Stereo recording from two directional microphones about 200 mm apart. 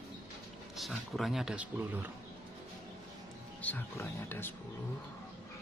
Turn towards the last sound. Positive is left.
turn(degrees=10)  # may be behind; listen again after turning